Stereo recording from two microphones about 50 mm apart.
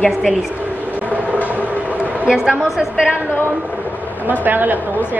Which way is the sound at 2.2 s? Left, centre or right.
Centre.